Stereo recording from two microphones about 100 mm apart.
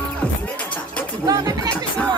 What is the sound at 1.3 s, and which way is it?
Music, 40° right (ahead or behind).